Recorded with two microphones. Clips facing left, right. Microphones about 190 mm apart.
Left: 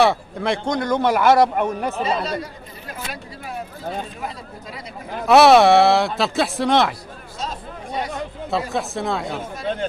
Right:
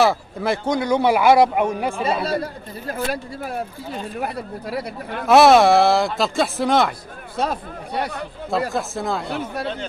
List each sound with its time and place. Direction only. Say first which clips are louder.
0.0 s speech: even; centre (ahead or behind)
2.2 s speech: right 3 dB; 55° right (ahead or behind)
5.2 s speech: even; centre (ahead or behind)
7.3 s speech: right 7 dB; 65° right (ahead or behind)
8.5 s speech: right 2 dB; centre (ahead or behind)